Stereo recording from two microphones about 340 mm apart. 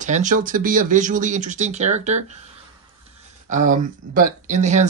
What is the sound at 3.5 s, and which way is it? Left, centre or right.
Speech, right.